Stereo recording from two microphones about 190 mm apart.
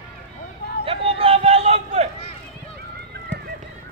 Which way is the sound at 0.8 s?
30° right (ahead or behind).